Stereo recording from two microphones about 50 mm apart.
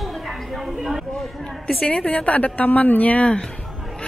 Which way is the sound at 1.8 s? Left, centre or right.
Left.